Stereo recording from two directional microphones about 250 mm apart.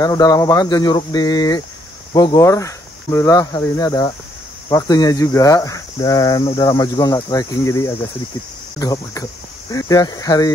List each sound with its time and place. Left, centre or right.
0.0 s speech: centre